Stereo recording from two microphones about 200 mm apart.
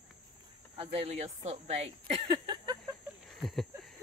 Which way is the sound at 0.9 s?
35° right (ahead or behind).